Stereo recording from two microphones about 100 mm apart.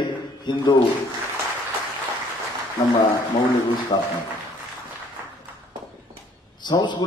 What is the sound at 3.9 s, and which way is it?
Speech, 55° left (ahead or behind).